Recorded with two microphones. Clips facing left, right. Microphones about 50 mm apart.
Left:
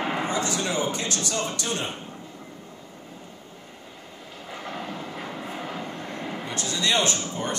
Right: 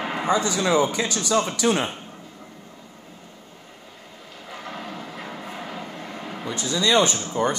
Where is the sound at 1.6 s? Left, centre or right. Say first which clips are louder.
Right 9 dB; right.